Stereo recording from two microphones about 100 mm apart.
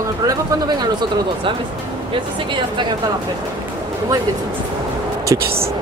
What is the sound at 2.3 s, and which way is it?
Speech, 50° right (ahead or behind).